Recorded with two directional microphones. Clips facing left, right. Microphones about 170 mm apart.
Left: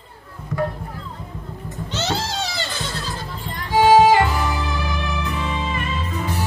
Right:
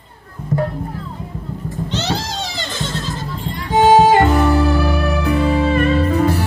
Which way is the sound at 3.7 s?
50° right (ahead or behind).